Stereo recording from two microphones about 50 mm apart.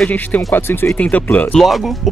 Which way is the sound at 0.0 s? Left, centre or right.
Left.